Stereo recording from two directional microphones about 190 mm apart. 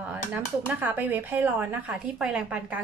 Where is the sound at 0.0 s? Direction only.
10° right (ahead or behind).